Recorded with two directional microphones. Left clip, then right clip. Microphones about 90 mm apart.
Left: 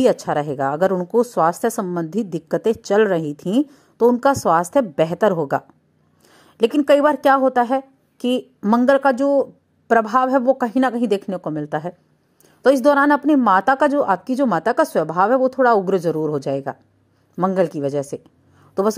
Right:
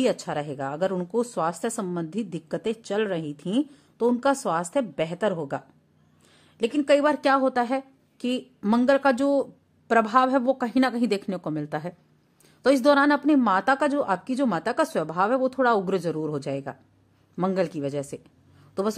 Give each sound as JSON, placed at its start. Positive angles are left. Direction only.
{"t": 0.0, "sound": "speech", "side_deg": 30}
{"t": 6.3, "sound": "a sound", "side_deg": 50}
{"t": 6.8, "sound": "speech", "side_deg": 35}
{"t": 7.1, "sound": "a woman's voice", "side_deg": 20}
{"t": 8.8, "sound": "a woman's voice", "side_deg": 15}